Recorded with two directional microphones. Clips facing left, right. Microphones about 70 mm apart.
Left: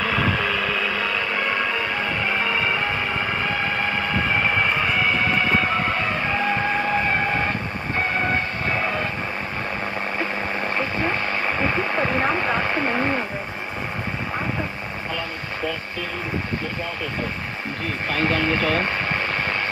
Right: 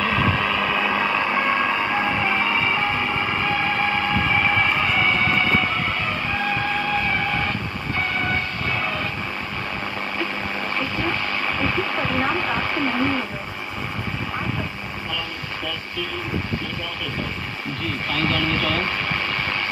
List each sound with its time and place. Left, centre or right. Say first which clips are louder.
0.0 s vehicle: right 1 dB; centre
5.8 s music: left 2 dB; left
8.0 s train: left 2 dB; left
10.1 s a sound: left 1 dB; left
18.1 s speech: left 2 dB; left